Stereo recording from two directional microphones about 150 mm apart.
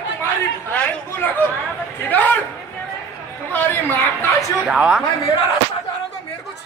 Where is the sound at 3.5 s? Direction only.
15° left (ahead or behind).